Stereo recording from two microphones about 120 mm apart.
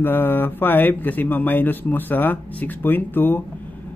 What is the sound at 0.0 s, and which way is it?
A man's voice, 15° left (ahead or behind).